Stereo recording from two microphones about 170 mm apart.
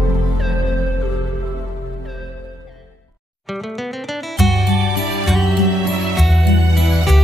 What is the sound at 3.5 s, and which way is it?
Music, centre (ahead or behind).